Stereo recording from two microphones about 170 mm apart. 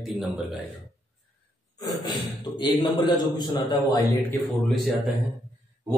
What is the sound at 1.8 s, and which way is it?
Speech, 25° left (ahead or behind).